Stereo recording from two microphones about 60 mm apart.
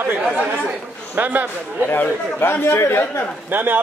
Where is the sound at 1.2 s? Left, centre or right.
Right.